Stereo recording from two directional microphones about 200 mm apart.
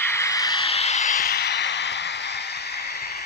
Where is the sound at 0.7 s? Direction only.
30° left (ahead or behind).